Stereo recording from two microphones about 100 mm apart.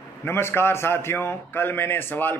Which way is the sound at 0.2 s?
25° left (ahead or behind).